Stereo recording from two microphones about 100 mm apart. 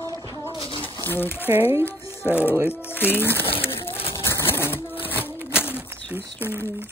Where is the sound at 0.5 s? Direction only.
60° left (ahead or behind).